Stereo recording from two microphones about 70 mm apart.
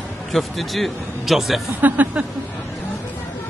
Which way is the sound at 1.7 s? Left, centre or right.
Right.